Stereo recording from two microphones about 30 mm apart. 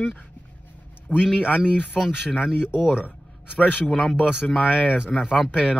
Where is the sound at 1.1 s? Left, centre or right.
Left.